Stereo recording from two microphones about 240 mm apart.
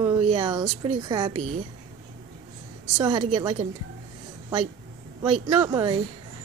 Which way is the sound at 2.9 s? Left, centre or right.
Centre.